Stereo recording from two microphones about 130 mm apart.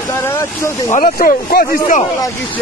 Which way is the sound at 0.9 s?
90° left.